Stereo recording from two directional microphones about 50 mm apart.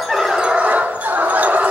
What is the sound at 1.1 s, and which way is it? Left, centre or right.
Fowl, right.